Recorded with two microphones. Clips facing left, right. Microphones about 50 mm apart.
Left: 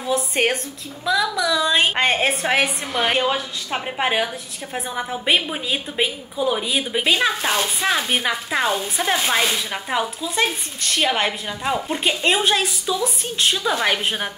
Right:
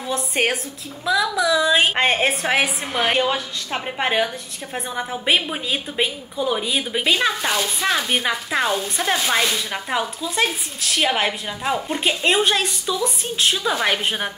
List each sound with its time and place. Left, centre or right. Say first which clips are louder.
0.0 s a woman's voice: left 1 dB; centre